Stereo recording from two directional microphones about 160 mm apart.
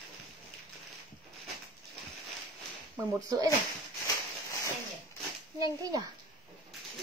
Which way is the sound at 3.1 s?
20° right (ahead or behind).